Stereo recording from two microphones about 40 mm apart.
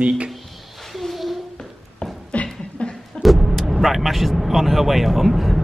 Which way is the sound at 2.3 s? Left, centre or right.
Left.